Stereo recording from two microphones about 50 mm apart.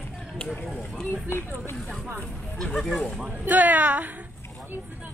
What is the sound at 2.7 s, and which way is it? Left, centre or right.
Speech, centre.